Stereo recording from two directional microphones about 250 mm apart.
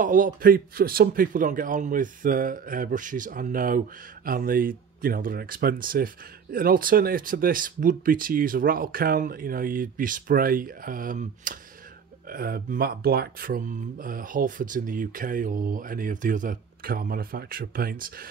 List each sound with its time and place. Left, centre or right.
0.0 s a man's voice: right